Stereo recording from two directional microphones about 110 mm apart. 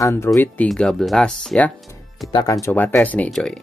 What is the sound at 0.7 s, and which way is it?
Speech, 5° left (ahead or behind).